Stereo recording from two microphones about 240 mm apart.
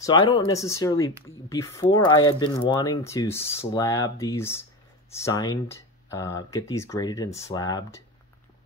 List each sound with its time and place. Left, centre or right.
0.0 s speech: centre